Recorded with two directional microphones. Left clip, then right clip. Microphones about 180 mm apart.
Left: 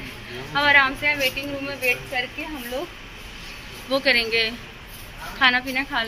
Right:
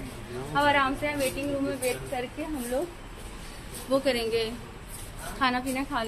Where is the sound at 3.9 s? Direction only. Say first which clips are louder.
Left 6 dB; 10° right (ahead or behind).